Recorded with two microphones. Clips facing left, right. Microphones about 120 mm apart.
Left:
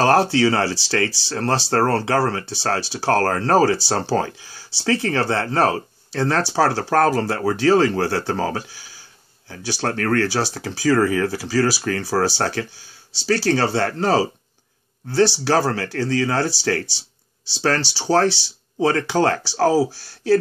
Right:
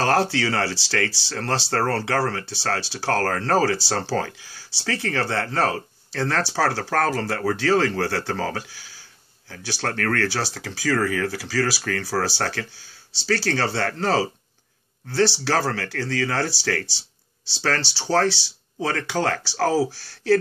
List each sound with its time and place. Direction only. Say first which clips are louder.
0.0 s speech: left 5 dB; 20° left (ahead or behind)